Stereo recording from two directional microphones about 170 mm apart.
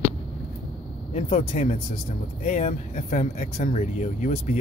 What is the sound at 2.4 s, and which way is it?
Speech, 45° left (ahead or behind).